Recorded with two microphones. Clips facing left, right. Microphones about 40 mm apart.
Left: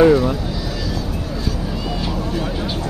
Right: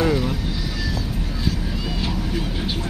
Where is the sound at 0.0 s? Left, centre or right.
Centre.